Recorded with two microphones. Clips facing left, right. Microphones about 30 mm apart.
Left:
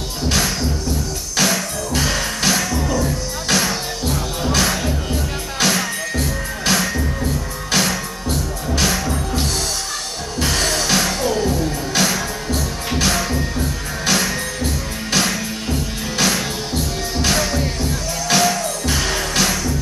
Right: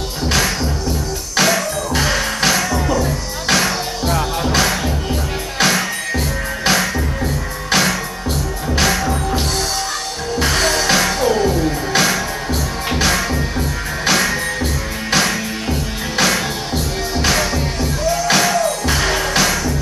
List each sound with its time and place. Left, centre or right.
0.3 s music: centre
10.4 s music: right